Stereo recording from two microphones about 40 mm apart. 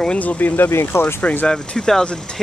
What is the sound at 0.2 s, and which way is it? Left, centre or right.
Speech, left.